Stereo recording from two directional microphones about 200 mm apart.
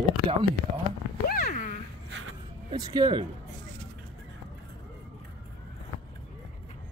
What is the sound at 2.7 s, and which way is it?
Speech, 20° right (ahead or behind).